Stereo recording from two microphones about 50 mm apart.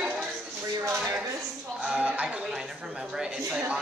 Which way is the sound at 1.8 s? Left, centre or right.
Right.